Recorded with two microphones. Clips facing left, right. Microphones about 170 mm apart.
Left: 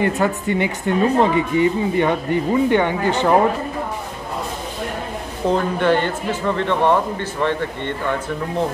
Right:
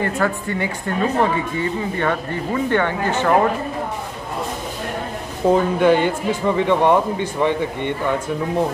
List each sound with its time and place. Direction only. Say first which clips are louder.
0.0 s a woman's voice: left 2 dB; 20° left (ahead or behind)
5.5 s speech: right 3 dB; 10° right (ahead or behind)